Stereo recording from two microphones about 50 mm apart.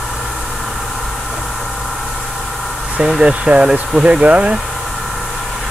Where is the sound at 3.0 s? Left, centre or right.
Centre.